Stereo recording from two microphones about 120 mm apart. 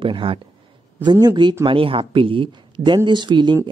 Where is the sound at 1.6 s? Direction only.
45° right (ahead or behind).